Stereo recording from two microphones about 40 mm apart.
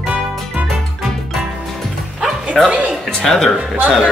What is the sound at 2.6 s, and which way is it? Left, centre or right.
Speech, centre.